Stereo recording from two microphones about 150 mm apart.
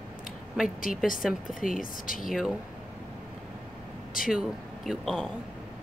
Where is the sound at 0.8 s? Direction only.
65° left (ahead or behind).